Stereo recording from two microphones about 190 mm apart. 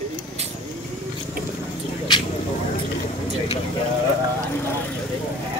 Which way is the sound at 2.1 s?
20° left (ahead or behind).